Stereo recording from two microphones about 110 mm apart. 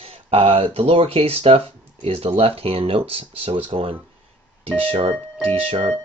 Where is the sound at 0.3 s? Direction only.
60° right (ahead or behind).